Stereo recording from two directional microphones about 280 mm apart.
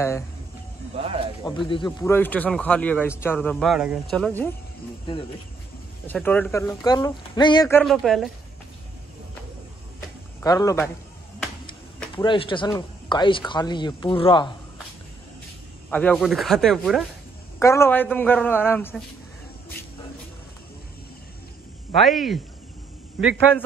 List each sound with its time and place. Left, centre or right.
0.9 s speech: centre
1.4 s speech: centre
6.0 s speech: centre
7.6 s speech: centre
10.4 s speech: centre
12.2 s speech: centre
15.9 s speech: centre
22.0 s speech: centre